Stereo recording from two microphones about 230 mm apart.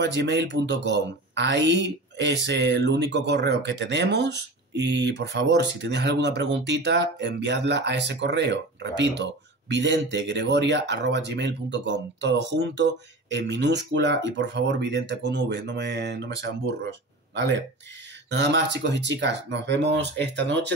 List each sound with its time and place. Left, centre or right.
0.0 s speech: right
18.3 s speech: right